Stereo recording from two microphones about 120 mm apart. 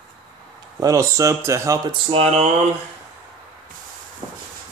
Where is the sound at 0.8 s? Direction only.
25° right (ahead or behind).